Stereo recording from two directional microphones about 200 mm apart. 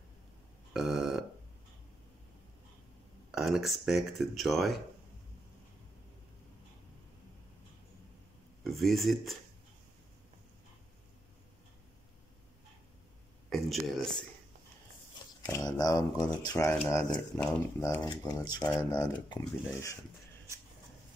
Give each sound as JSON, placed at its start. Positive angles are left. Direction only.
{"t": 0.7, "sound": "a sound", "side_deg": 0}
{"t": 3.3, "sound": "speech", "side_deg": -5}
{"t": 8.6, "sound": "speech", "side_deg": 0}
{"t": 13.5, "sound": "speech", "side_deg": 0}
{"t": 15.4, "sound": "speech", "side_deg": 15}
{"t": 16.6, "sound": "speech", "side_deg": 0}
{"t": 16.9, "sound": "speech", "side_deg": 15}